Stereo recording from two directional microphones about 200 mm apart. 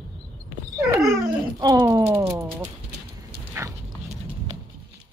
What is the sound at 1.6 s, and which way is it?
Speech, 20° right (ahead or behind).